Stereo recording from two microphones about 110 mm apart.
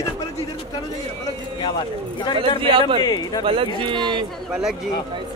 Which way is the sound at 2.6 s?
55° right (ahead or behind).